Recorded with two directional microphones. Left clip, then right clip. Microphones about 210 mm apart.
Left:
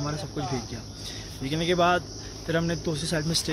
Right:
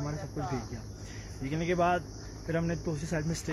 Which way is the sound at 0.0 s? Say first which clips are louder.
Left 5 dB; 15° left (ahead or behind).